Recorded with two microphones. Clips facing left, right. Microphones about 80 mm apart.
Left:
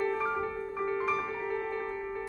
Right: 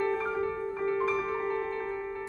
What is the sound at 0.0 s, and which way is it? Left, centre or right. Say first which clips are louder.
Music: right 1 dB; centre.